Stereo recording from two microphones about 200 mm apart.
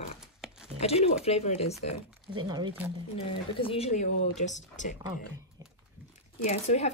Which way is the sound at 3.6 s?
30° left (ahead or behind).